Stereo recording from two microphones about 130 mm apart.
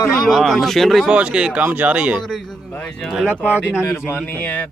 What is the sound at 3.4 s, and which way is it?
Speech, 15° left (ahead or behind).